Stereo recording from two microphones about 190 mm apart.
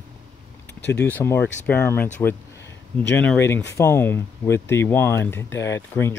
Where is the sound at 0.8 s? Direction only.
60° left (ahead or behind).